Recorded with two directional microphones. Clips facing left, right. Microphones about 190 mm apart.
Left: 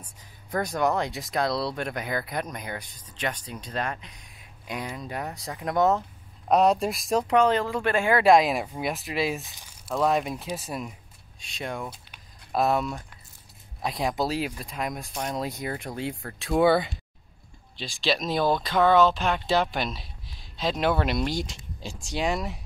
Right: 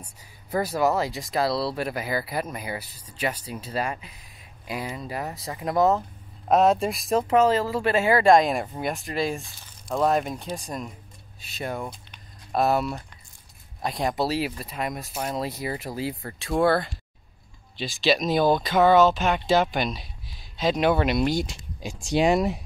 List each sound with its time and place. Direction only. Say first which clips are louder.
0.0 s speech: right 2 dB; 5° right (ahead or behind)
9.5 s a sound: right 1 dB; 15° left (ahead or behind)
9.8 s speech: right 1 dB; centre (ahead or behind)
21.7 s speech: right 8 dB; 15° right (ahead or behind)